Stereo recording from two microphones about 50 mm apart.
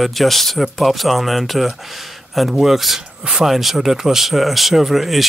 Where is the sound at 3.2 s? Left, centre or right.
Centre.